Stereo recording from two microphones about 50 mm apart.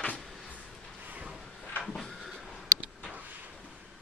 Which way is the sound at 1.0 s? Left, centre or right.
Right.